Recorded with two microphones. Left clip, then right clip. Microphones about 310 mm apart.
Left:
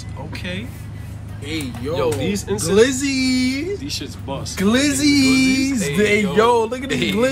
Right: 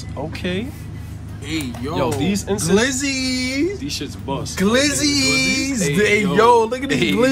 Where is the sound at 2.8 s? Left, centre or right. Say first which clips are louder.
Left 6 dB; right.